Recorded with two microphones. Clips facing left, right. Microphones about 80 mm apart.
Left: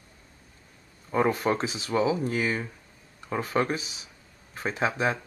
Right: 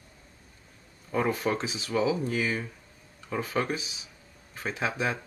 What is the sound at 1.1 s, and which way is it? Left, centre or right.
Speech, left.